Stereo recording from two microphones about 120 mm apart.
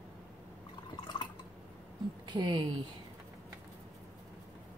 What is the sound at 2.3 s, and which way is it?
Speech, 40° right (ahead or behind).